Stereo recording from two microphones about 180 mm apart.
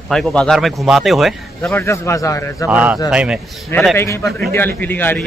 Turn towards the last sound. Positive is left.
turn(degrees=10)  # may be behind; listen again after turning